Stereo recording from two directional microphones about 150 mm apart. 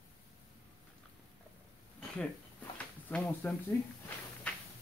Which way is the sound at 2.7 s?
10° left (ahead or behind).